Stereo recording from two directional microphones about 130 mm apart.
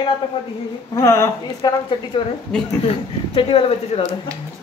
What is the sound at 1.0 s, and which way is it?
Speech, 20° left (ahead or behind).